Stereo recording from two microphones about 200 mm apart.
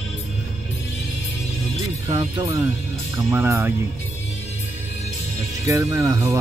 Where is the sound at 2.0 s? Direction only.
20° right (ahead or behind).